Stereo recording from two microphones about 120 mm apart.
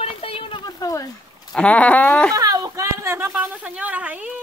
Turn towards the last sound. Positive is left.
turn(degrees=-10)  # may be behind; listen again after turning